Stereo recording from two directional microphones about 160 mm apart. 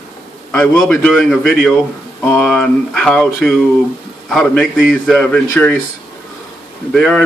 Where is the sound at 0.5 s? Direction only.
10° left (ahead or behind).